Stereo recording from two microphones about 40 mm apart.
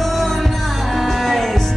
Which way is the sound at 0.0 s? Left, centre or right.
Centre.